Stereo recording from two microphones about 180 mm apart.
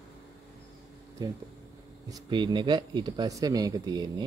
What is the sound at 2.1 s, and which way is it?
Speech, 25° right (ahead or behind).